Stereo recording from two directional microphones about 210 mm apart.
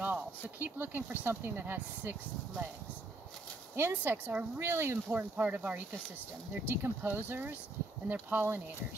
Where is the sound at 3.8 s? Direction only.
10° right (ahead or behind).